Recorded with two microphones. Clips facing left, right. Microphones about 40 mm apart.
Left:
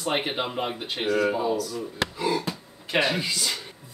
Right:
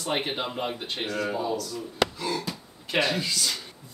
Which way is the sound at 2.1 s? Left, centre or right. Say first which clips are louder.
Left 4 dB; centre.